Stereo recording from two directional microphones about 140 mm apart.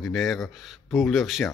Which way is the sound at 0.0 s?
Centre (ahead or behind).